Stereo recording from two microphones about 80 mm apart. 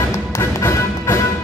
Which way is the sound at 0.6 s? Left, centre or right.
Left.